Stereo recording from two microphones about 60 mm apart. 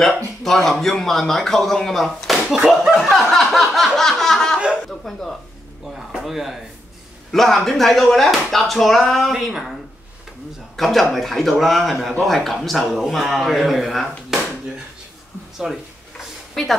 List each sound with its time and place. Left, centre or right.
0.0 s speech: centre
3.3 s a sound: centre
4.6 s chuckle: centre
5.0 s speech: centre
5.9 s a sound: centre
7.2 s speech: centre
10.8 s speech: centre
15.5 s speech: centre